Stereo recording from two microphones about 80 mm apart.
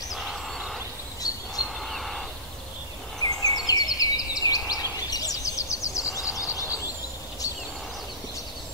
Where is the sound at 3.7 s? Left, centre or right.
Left.